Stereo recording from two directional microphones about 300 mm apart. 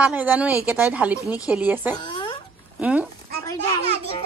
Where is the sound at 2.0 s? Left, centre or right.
Centre.